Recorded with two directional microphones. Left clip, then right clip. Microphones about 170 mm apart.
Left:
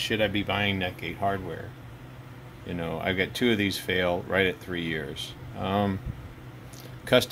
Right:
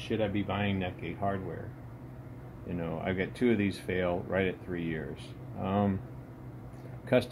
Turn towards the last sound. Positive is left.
turn(degrees=40)  # may be behind; listen again after turning